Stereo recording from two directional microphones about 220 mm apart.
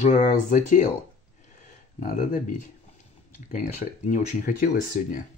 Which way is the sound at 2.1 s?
35° left (ahead or behind).